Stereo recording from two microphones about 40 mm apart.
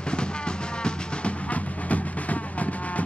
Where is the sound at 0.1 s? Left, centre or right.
Left.